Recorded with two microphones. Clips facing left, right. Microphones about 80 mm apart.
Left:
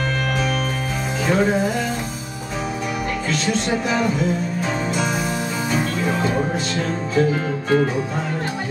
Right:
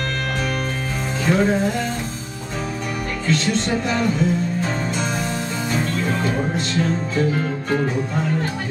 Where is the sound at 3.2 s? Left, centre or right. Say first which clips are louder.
Right 3 dB; centre.